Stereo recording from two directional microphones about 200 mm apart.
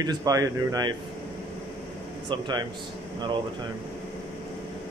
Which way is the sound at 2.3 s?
20° right (ahead or behind).